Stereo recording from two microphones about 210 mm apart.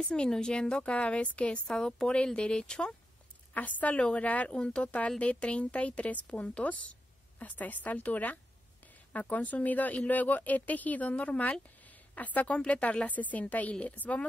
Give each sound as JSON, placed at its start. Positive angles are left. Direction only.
{"t": 0.0, "sound": "a woman's voice", "side_deg": 5}